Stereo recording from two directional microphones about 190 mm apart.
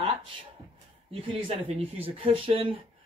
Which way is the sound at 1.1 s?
30° right (ahead or behind).